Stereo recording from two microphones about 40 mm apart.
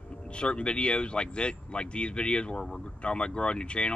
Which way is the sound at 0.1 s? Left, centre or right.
Left.